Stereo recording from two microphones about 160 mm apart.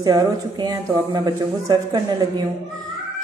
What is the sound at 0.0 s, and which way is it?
A man's voice, 25° right (ahead or behind).